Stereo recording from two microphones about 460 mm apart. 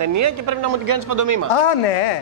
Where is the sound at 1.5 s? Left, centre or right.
Left.